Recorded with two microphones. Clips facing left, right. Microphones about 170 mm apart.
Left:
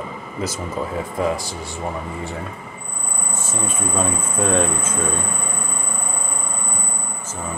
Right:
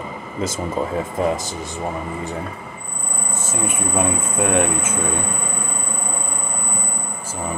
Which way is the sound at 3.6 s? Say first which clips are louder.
Right 2 dB; 10° right (ahead or behind).